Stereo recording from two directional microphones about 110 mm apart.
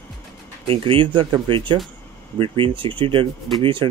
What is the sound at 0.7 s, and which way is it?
Speech, 50° right (ahead or behind).